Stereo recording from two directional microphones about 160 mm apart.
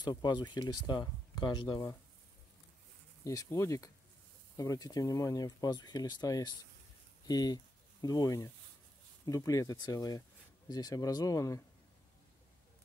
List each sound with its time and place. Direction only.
0.0 s speech: 25° left (ahead or behind)
3.3 s speech: 20° left (ahead or behind)